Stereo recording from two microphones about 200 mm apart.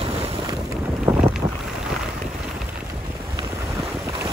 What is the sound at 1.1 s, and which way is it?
Boat, 10° right (ahead or behind).